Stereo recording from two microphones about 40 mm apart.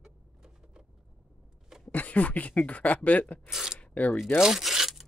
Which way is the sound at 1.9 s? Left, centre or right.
Left.